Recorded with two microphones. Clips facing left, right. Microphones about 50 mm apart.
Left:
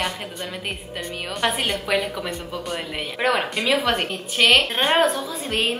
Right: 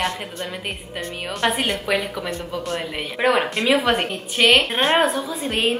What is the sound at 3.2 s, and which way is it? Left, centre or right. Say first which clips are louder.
A woman's voice: right 3 dB; centre.